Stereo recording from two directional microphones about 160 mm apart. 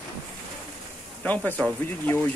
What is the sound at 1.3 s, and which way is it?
Speech, 10° left (ahead or behind).